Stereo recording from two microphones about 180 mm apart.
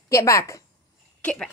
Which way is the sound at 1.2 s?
5° left (ahead or behind).